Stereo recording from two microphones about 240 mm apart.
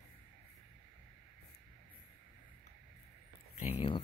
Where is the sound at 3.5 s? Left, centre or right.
Left.